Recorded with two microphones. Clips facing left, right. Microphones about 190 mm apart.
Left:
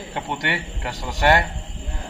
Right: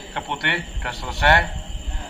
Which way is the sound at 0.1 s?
15° left (ahead or behind).